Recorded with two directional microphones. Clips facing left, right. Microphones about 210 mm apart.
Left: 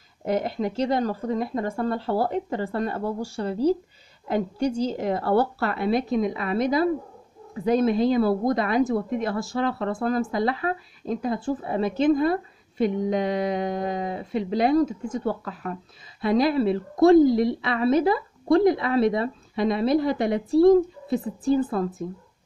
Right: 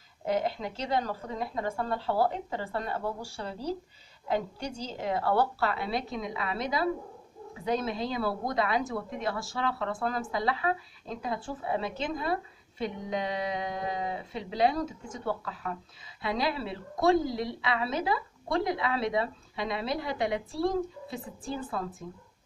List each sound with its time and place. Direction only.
0.4 s a woman's voice: 50° left (ahead or behind)